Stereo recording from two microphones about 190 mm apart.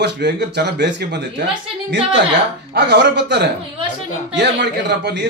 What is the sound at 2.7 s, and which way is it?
A man's voice, 60° right (ahead or behind).